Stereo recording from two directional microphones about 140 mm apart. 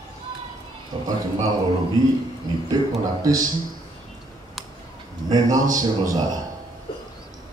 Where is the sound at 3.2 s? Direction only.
25° right (ahead or behind).